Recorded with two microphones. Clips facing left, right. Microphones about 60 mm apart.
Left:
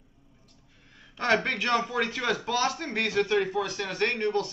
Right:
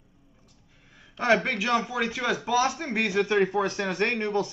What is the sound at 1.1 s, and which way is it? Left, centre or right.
Speech, centre.